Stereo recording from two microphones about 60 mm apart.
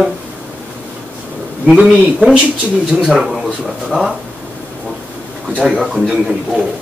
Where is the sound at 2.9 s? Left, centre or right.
Centre.